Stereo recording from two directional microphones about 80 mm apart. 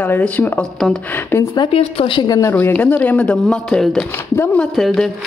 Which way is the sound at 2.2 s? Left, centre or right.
Left.